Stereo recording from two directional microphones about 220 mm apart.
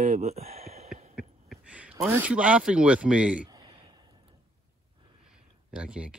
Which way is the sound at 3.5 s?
20° right (ahead or behind).